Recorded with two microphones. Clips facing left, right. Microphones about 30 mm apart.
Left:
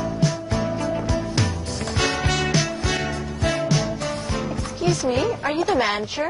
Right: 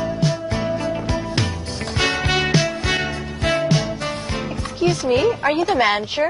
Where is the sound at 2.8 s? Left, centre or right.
Right.